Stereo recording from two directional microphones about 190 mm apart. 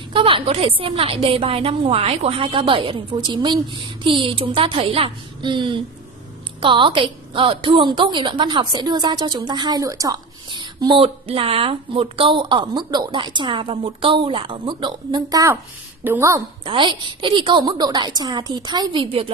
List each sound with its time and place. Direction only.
0.1 s a woman's voice: 30° right (ahead or behind)
16.6 s a woman's voice: 25° right (ahead or behind)